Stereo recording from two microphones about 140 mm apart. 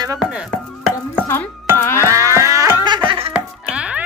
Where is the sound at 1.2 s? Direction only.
20° left (ahead or behind).